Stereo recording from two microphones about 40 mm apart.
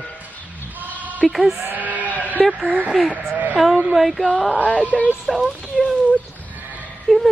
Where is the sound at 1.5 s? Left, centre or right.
Right.